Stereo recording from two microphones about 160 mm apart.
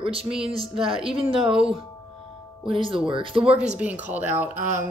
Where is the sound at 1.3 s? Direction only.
35° right (ahead or behind).